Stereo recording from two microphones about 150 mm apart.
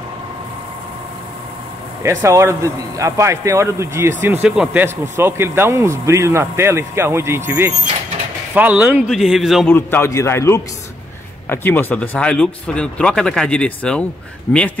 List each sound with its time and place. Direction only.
2.0 s a man's voice: 20° right (ahead or behind); by 9.7 s centre (ahead or behind)
9.7 s speech: 15° left (ahead or behind)